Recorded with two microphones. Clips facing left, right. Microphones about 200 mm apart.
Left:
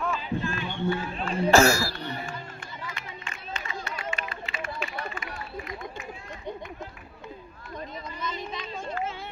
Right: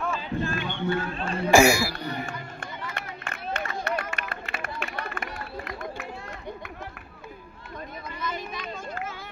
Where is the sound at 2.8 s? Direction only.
65° right (ahead or behind).